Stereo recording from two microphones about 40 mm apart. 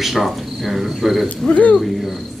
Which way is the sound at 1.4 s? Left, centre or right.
Left.